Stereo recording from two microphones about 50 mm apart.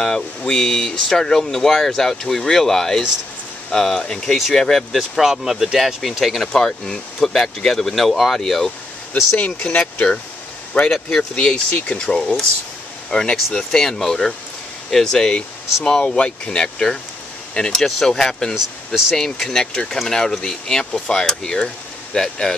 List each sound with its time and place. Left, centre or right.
0.0 s speech: centre
4.9 s speech: centre
9.1 s speech: left
9.8 s speech: left
10.9 s speech: centre; by 12.2 s left
13.1 s speech: centre